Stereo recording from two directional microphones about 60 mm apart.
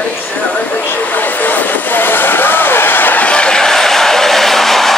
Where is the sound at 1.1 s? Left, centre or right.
Left.